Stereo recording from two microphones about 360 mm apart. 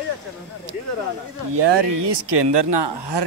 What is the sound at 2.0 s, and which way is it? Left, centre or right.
Speech, right.